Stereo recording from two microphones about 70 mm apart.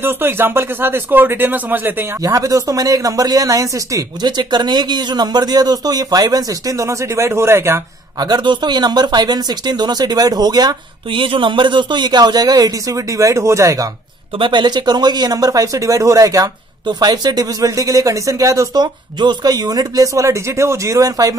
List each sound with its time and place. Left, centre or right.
0.0 s speech: right
2.2 s speech: right
4.2 s speech: right
8.2 s speech: right
11.9 s speech: right
14.5 s speech: right
16.8 s speech: right
19.1 s speech: right